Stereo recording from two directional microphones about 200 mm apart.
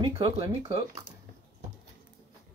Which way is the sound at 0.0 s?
25° right (ahead or behind).